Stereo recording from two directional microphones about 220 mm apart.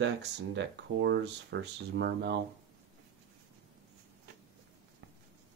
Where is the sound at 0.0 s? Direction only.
55° right (ahead or behind).